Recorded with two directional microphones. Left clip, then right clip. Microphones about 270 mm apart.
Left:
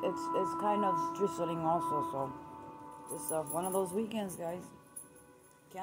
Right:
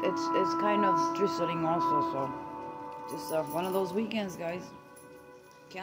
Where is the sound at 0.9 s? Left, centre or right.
Right.